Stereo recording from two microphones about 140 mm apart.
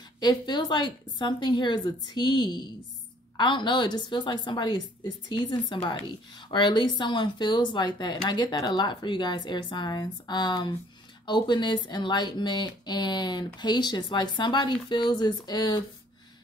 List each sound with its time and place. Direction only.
0.2 s a woman's voice: 30° left (ahead or behind)